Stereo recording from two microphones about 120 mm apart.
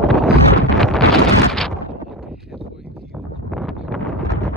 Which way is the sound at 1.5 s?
5° left (ahead or behind).